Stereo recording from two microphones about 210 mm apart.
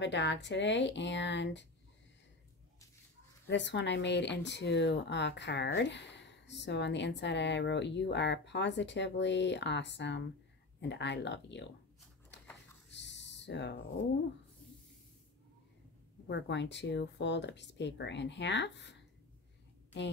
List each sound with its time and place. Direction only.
0.0 s speech: 55° left (ahead or behind)
3.4 s speech: 55° left (ahead or behind)
12.3 s a sound: 55° left (ahead or behind)
12.9 s owl: 55° left (ahead or behind)
16.3 s speech: 55° left (ahead or behind)